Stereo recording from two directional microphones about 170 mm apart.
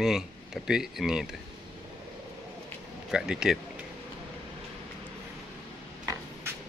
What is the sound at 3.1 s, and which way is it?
Speech, 5° right (ahead or behind).